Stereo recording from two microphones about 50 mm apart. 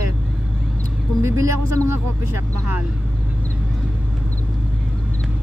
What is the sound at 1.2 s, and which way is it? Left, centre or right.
Speech, right.